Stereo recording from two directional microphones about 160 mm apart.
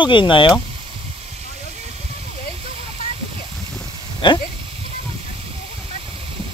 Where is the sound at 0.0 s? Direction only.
30° left (ahead or behind).